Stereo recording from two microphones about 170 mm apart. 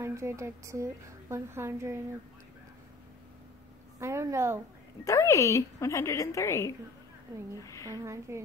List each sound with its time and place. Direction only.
0.0 s a woman's voice: 15° right (ahead or behind)
4.0 s a woman's voice: 15° right (ahead or behind)
5.0 s a woman's voice: 20° left (ahead or behind)
7.9 s a woman's voice: 15° right (ahead or behind)